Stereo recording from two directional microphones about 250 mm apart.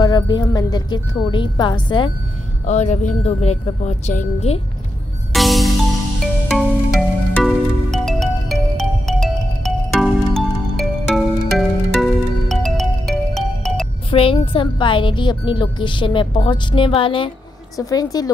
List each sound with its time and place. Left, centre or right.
0.0 s a woman's voice: centre
5.3 s music: centre
14.1 s a woman's voice: left